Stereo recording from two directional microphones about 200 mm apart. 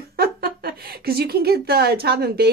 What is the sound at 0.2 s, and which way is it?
A woman's voice, 50° right (ahead or behind).